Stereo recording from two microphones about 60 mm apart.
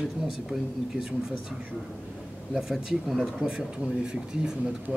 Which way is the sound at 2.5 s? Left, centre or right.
Centre.